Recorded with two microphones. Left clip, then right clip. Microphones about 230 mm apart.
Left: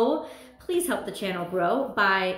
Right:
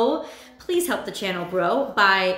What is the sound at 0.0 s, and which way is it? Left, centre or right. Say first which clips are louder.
A woman's voice: right 2 dB; centre.